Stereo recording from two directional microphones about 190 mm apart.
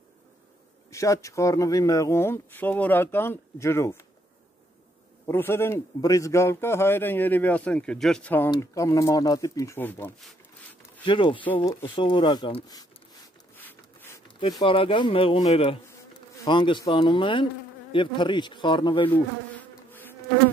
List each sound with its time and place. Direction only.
0.9 s a man's voice: 15° left (ahead or behind)
5.2 s a man's voice: 10° left (ahead or behind)
11.1 s speech: 25° left (ahead or behind)
13.6 s a sound: 10° left (ahead or behind)
14.2 s speech: 25° left (ahead or behind)